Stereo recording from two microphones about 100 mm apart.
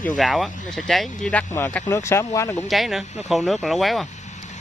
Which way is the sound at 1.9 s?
25° left (ahead or behind).